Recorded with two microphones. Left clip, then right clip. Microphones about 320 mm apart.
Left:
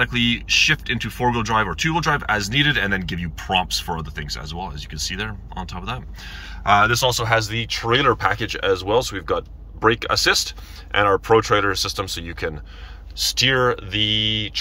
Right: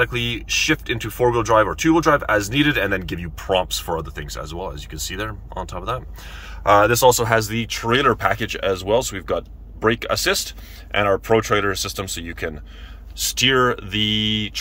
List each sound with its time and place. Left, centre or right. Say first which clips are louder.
0.0 s speech: left 1 dB; right